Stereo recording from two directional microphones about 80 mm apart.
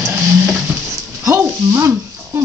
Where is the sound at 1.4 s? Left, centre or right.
Right.